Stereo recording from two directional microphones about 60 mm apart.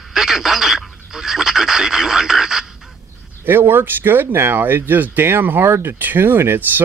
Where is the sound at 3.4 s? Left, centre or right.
Right.